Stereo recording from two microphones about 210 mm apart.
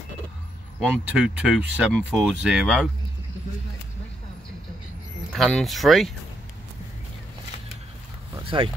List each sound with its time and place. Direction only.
0.7 s speech: 5° right (ahead or behind)
5.3 s speech: centre (ahead or behind)
8.5 s speech: 25° right (ahead or behind)